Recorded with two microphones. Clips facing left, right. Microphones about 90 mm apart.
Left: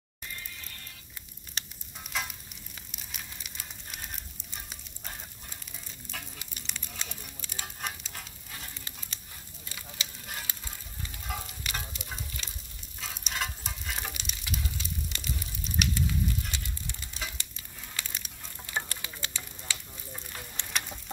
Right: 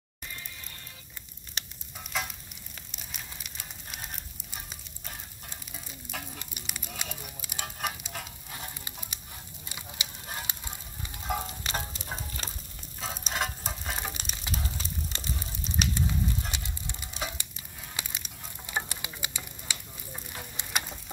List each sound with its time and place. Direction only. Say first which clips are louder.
1.6 s sizzle: even; centre (ahead or behind)
2.9 s a sound: right 1 dB; centre (ahead or behind)
6.5 s a sound: right 2 dB; 10° right (ahead or behind)
7.4 s sizzle: right 4 dB; 10° right (ahead or behind)
9.7 s fire: right 1 dB; 15° right (ahead or behind)
11.0 s frying: right 6 dB; 25° right (ahead or behind)
13.0 s stir: right 3 dB; 30° right (ahead or behind)
14.1 s a sound: right 1 dB; 35° right (ahead or behind); by 17.5 s 20° right (ahead or behind)
18.0 s patter: right 1 dB; 20° right (ahead or behind)
18.7 s fire: right 1 dB; 15° right (ahead or behind)